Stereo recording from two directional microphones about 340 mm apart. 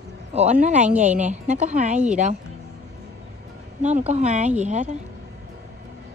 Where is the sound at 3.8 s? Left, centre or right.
Centre.